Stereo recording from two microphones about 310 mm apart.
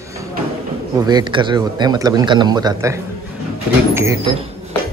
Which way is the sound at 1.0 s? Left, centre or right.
Centre.